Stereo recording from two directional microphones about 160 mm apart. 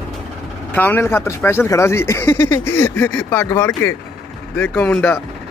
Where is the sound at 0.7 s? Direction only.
15° left (ahead or behind).